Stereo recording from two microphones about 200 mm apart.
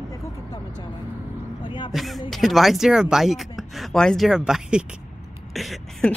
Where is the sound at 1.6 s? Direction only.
25° left (ahead or behind).